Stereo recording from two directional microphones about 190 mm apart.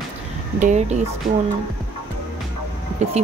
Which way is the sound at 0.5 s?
40° right (ahead or behind).